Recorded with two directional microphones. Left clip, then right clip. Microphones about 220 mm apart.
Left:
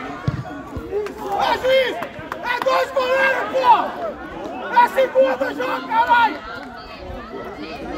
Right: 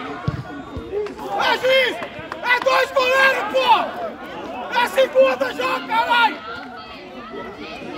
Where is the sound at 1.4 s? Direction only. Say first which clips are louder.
Right 1 dB; 35° right (ahead or behind).